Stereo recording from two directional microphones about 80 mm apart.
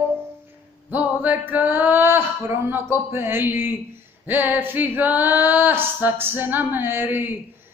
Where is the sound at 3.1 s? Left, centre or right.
Right.